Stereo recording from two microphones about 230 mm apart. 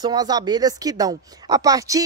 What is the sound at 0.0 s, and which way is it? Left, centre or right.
Speech, centre.